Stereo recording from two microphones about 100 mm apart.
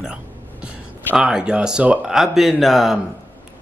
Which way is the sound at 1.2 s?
10° right (ahead or behind).